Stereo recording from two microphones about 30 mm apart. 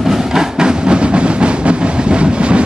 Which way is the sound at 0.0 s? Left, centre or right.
Centre.